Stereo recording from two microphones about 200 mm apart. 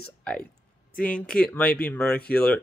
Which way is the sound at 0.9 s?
45° left (ahead or behind).